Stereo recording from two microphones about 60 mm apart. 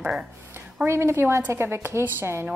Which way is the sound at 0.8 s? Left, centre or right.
Right.